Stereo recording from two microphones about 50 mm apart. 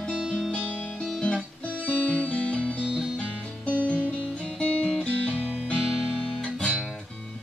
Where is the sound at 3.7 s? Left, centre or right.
Right.